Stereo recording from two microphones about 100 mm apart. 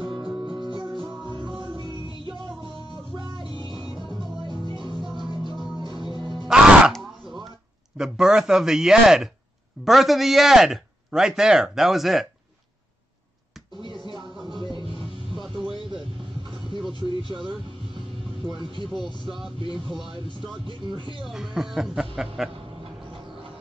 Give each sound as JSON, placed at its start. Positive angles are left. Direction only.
{"t": 0.0, "sound": "music", "side_deg": -55}
{"t": 3.6, "sound": "music", "side_deg": -55}
{"t": 3.9, "sound": "music", "side_deg": -5}
{"t": 4.5, "sound": "music", "side_deg": -50}
{"t": 6.4, "sound": "music", "side_deg": -10}
{"t": 6.9, "sound": "a sound", "side_deg": 0}
{"t": 8.0, "sound": "a man's voice", "side_deg": -5}
{"t": 14.5, "sound": "music", "side_deg": -50}
{"t": 15.4, "sound": "music", "side_deg": 0}
{"t": 18.6, "sound": "speech", "side_deg": -55}
{"t": 20.6, "sound": "speech", "side_deg": -55}
{"t": 21.2, "sound": "a man's voice", "side_deg": -5}